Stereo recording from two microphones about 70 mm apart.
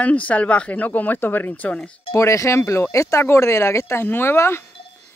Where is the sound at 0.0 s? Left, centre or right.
Left.